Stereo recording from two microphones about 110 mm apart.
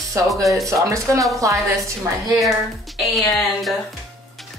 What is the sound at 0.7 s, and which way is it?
Speech, 30° right (ahead or behind).